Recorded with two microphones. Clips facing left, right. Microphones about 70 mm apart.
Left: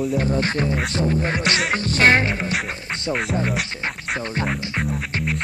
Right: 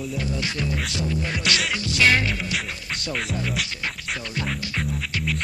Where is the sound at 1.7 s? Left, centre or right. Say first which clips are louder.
Left 4 dB; left.